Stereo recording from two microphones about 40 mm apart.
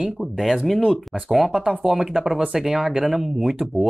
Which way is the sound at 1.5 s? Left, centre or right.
Right.